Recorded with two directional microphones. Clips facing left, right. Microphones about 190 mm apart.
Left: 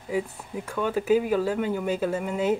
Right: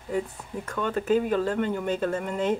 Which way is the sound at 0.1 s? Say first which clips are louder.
Left 1 dB; 5° left (ahead or behind).